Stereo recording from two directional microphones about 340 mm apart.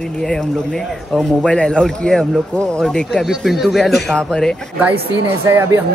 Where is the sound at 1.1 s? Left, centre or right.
Centre.